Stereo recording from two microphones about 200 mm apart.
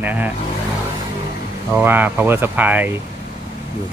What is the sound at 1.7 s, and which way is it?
Speech, 10° right (ahead or behind).